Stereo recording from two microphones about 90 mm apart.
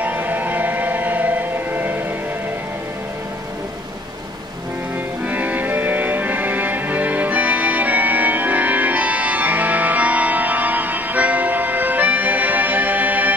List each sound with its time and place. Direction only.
0.0 s siren: 20° right (ahead or behind)
5.2 s music: 15° right (ahead or behind)